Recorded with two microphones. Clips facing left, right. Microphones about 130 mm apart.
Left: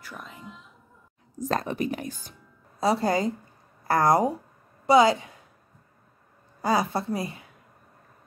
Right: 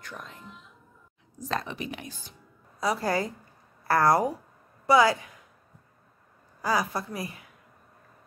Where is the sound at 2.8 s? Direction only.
25° left (ahead or behind).